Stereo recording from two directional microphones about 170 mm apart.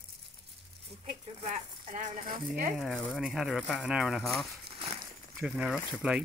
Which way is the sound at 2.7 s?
5° left (ahead or behind).